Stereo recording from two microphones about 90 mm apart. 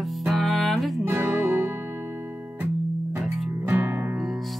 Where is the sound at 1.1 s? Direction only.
30° right (ahead or behind).